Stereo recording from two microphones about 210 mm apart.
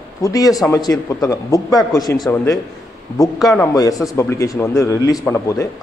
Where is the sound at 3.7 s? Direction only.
15° left (ahead or behind).